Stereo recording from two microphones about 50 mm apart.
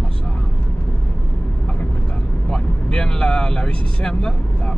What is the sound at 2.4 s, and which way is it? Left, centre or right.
Speech, centre.